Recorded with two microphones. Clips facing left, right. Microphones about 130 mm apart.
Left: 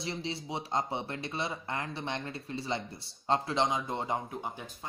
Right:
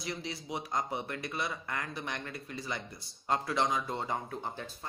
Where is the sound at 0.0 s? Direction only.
30° left (ahead or behind).